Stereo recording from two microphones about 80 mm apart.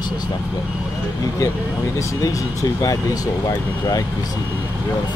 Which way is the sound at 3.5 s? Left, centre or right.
Left.